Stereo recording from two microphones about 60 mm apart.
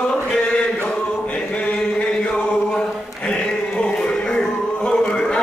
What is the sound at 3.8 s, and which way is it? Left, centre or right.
Music, centre.